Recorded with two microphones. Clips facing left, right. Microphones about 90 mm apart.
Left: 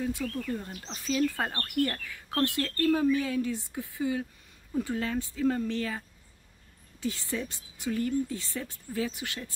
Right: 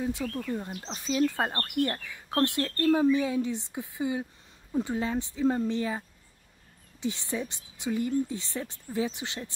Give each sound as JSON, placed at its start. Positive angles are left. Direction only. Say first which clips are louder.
{"t": 0.0, "sound": "speech", "louder": "right 1 dB", "side_deg": -20}